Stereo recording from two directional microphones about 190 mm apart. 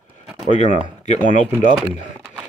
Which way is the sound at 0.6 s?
35° left (ahead or behind).